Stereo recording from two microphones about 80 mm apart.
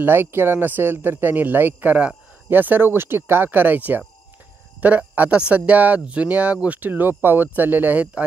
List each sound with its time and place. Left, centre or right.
0.0 s speech: right